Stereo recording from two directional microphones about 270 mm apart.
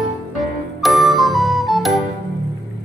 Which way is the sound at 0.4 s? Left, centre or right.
Centre.